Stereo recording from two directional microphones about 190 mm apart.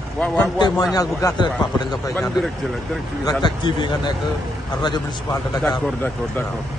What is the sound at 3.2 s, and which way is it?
A man's voice, 25° left (ahead or behind).